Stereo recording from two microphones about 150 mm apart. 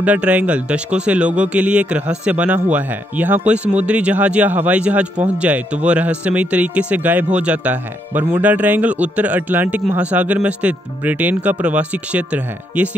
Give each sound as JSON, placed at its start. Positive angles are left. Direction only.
{"t": 0.0, "sound": "a man's voice", "side_deg": -10}